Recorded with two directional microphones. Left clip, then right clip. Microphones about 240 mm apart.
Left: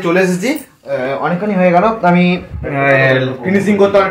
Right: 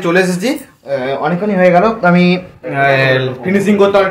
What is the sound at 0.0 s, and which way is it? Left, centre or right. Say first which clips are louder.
Speech: right 1 dB; centre.